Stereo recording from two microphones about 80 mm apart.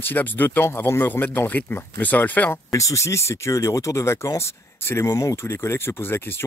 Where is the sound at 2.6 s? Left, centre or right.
Left.